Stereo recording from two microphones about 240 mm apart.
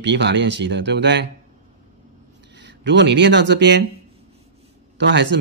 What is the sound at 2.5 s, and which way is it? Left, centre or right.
Speech, right.